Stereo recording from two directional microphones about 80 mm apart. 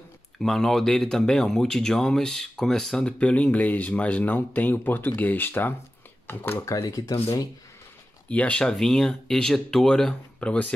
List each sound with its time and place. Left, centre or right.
0.4 s speech: centre; by 6.6 s left
6.6 s speech: left
8.3 s speech: centre